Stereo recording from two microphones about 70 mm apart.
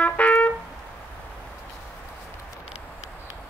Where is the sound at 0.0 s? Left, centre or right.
Centre.